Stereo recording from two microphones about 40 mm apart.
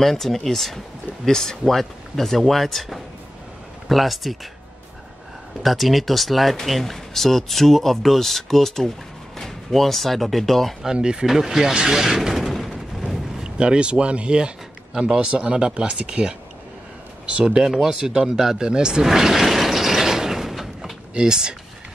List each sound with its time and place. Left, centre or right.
0.0 s speech: centre
5.6 s speech: centre
10.9 s speech: centre
11.2 s speech: centre
11.7 s artillery fire: centre
13.4 s speech: right
19.0 s a sound: centre
21.1 s speech: centre